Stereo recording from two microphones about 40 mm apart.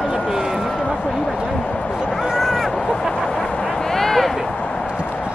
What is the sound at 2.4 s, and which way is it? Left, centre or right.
Vehicle, centre.